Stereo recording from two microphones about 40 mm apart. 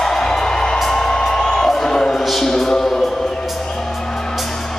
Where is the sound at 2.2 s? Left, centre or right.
Centre.